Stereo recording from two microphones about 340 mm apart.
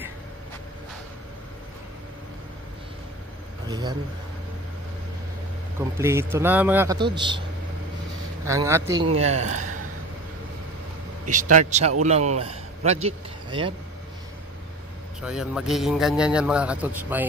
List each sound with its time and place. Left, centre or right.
3.6 s a man's voice: centre
5.8 s speech: centre
8.5 s speech: centre
11.2 s a man's voice: right
15.2 s a man's voice: centre